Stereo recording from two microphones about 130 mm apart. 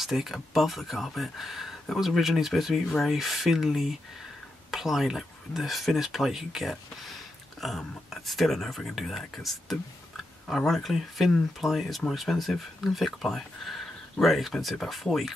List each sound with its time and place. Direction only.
0.0 s speech: centre (ahead or behind)
9.3 s a sound: centre (ahead or behind)
10.7 s speech: centre (ahead or behind)